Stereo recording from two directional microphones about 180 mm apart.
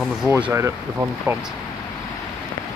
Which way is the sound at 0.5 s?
15° right (ahead or behind).